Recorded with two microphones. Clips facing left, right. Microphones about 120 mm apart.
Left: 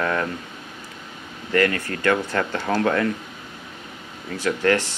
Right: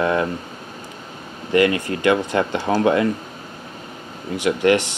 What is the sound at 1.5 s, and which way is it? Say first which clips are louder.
Speech: right 4 dB; 15° right (ahead or behind).